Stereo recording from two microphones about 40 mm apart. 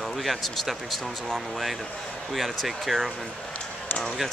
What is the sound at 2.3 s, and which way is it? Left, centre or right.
Speech, centre.